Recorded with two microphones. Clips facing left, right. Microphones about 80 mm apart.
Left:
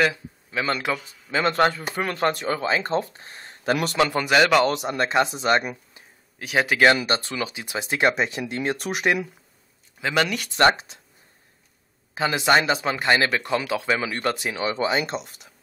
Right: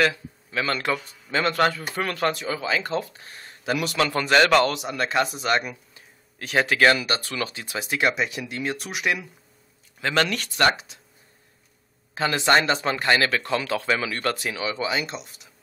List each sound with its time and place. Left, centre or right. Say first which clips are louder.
0.0 s a man's voice: even; centre
0.8 s speech: right 1 dB; centre
1.4 s speech: left 2 dB; left
2.3 s speech: left 3 dB; left
2.7 s speech: left 2 dB; left
4.0 s speech: even; centre
4.7 s speech: left 2 dB; left
6.3 s speech: even; centre
6.9 s speech: left 2 dB; left
7.3 s speech: left 1 dB; centre; by 9.3 s left
9.9 s speech: even; centre
12.1 s speech: left 1 dB; centre
13.1 s speech: left 1 dB; centre; by 15.2 s left